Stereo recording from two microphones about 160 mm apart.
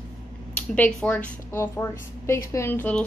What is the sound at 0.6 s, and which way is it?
A woman's voice, 5° left (ahead or behind).